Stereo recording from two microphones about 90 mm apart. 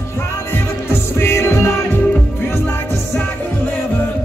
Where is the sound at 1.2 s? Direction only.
30° left (ahead or behind).